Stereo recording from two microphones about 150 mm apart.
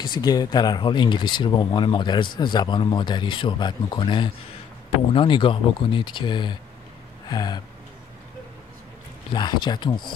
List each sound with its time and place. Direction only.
0.0 s speech: 25° left (ahead or behind)
9.3 s speech: 30° left (ahead or behind)